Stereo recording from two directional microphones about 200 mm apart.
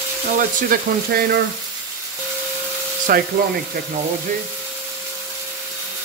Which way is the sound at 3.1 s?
45° right (ahead or behind).